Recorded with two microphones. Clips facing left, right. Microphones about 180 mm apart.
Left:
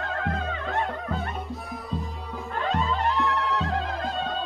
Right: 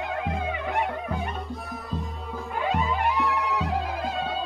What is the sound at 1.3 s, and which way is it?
Music, centre (ahead or behind).